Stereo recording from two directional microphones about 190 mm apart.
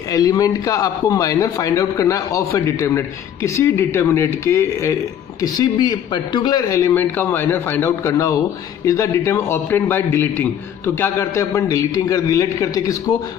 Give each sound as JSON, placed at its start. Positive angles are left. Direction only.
{"t": 0.1, "sound": "a man's voice", "side_deg": 20}